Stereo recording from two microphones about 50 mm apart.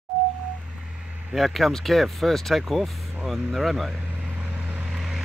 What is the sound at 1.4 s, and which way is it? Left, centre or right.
Speech, centre.